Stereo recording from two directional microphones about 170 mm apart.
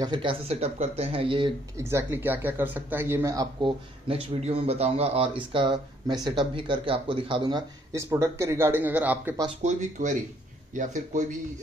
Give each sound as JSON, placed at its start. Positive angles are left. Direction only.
{"t": 0.0, "sound": "speech", "side_deg": -30}
{"t": 1.8, "sound": "speech", "side_deg": -15}
{"t": 4.1, "sound": "speech", "side_deg": -35}
{"t": 9.6, "sound": "speech", "side_deg": -45}